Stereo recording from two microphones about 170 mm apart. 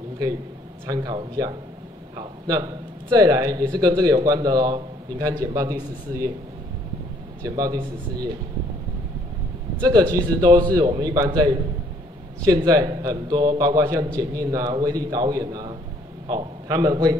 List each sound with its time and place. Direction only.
0.8 s a man's voice: 25° right (ahead or behind)
7.4 s a man's voice: 20° right (ahead or behind)
9.8 s a man's voice: 20° right (ahead or behind)